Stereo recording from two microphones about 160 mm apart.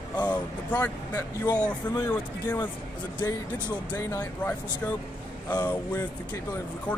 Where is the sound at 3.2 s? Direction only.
25° left (ahead or behind).